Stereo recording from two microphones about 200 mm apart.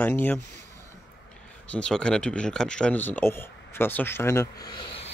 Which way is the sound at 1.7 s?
5° left (ahead or behind).